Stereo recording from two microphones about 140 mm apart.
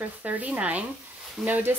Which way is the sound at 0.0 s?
10° right (ahead or behind).